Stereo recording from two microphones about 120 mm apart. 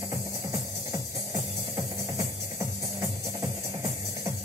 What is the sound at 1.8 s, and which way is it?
Music, 30° right (ahead or behind).